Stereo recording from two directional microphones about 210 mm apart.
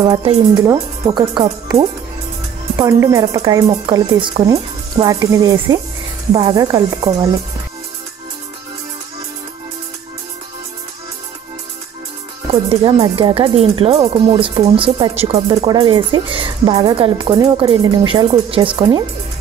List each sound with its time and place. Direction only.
0.0 s speech: 25° right (ahead or behind)
12.4 s speech: 30° right (ahead or behind)